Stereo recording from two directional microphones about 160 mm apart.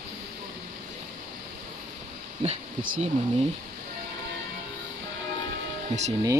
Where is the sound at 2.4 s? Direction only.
40° right (ahead or behind).